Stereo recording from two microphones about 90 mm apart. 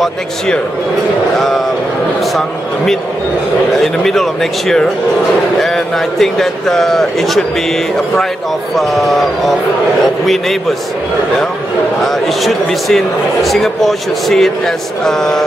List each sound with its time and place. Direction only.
2.3 s speech: 5° left (ahead or behind)
8.7 s speech: centre (ahead or behind)
12.1 s speech: centre (ahead or behind)